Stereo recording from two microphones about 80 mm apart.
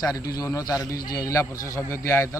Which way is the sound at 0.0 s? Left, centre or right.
Left.